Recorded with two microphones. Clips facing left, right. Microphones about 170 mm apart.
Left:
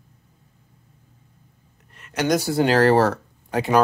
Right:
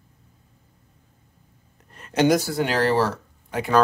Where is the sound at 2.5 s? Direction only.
40° left (ahead or behind).